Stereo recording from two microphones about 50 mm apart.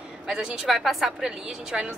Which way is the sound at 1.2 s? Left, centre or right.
Centre.